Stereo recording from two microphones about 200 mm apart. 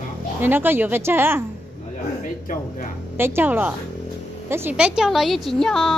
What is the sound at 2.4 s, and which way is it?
Speech, 45° left (ahead or behind).